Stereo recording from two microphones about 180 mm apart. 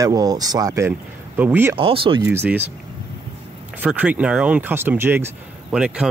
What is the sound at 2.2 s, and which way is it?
Speech, 10° right (ahead or behind).